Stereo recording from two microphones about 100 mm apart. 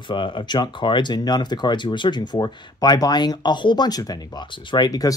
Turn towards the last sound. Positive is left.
turn(degrees=40)  # may be behind; listen again after turning